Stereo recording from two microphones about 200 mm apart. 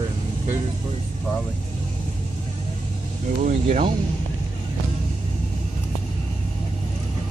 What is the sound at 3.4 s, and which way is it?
Speech, 35° right (ahead or behind).